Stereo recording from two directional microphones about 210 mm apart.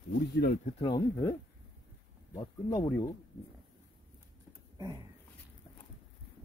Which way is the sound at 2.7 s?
15° left (ahead or behind).